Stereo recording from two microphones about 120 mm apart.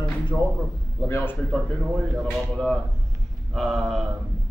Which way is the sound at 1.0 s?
20° left (ahead or behind).